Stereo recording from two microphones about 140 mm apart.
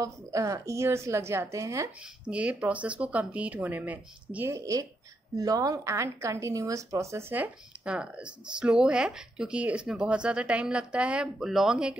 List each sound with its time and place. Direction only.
0.0 s a woman's voice: 25° right (ahead or behind)
2.2 s a woman's voice: 10° right (ahead or behind)